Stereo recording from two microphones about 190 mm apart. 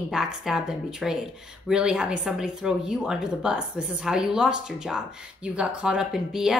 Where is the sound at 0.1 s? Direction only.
5° right (ahead or behind).